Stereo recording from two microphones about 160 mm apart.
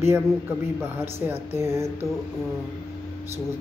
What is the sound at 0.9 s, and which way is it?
Speech, 15° right (ahead or behind).